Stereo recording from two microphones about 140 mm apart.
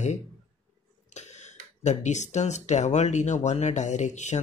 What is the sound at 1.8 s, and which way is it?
Speech, 55° left (ahead or behind).